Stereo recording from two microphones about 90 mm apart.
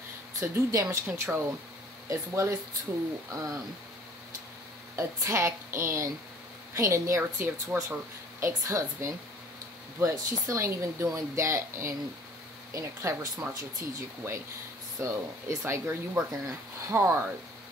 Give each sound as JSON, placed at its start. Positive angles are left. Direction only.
{"t": 0.4, "sound": "a woman's voice", "side_deg": -40}
{"t": 4.9, "sound": "a woman's voice", "side_deg": -35}